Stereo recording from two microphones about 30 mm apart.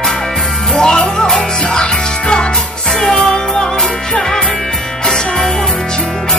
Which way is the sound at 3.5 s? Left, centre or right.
Left.